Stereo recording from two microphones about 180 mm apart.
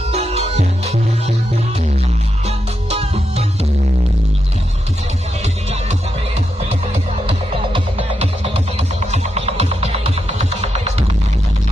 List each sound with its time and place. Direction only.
0.1 s music: 35° right (ahead or behind)
2.4 s music: 35° right (ahead or behind)
5.4 s music: 35° right (ahead or behind)
7.2 s music: 30° right (ahead or behind)